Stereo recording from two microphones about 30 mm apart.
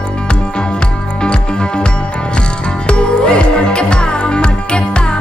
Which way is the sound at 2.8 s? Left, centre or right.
Left.